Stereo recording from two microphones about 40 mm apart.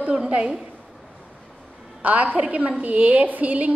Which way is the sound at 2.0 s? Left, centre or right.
Right.